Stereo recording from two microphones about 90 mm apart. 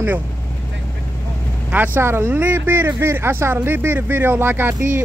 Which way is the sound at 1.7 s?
20° right (ahead or behind).